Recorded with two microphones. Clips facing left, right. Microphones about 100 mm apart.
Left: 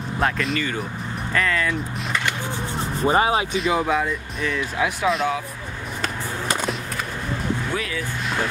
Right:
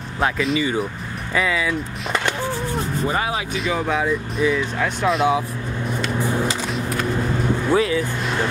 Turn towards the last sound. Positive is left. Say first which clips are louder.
# right 9 dB
turn(degrees=-25)  # may be behind; listen again after turning